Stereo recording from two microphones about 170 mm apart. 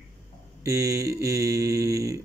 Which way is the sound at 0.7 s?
20° right (ahead or behind).